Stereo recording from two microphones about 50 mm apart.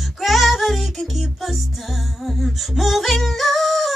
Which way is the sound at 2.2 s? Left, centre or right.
Centre.